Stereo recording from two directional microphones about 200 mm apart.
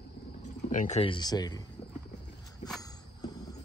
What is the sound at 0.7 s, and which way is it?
Speech, 40° left (ahead or behind).